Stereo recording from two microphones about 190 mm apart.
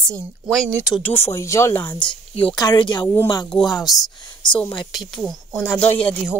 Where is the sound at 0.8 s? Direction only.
5° left (ahead or behind).